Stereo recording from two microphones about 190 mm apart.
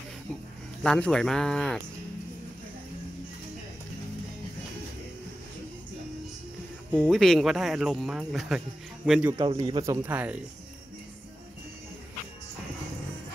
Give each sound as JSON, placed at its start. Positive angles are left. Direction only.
{"t": 0.8, "sound": "speech", "side_deg": 5}
{"t": 7.0, "sound": "speech", "side_deg": 0}
{"t": 9.4, "sound": "speech", "side_deg": -25}